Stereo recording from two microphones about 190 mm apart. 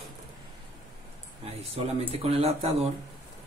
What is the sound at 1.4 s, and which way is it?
Speech, 30° right (ahead or behind).